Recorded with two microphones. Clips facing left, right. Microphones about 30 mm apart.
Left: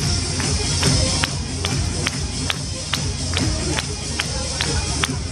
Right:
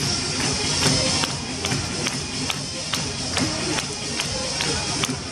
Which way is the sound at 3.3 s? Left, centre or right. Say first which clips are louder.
Left 1 dB; centre.